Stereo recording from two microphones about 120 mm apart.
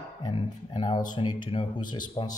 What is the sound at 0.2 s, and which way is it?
Speech, 45° left (ahead or behind).